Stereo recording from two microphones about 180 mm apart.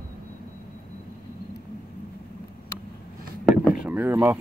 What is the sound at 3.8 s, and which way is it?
Speech, 10° right (ahead or behind).